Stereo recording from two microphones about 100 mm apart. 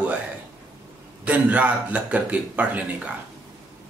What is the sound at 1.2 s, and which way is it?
Speech, 15° right (ahead or behind).